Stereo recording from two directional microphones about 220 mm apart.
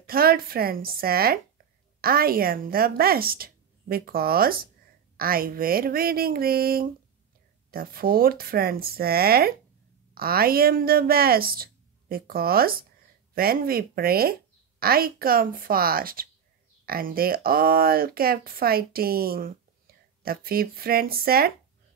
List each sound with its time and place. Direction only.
0.0 s speech: 40° right (ahead or behind)